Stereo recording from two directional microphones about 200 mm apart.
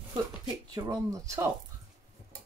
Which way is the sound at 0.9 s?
15° right (ahead or behind).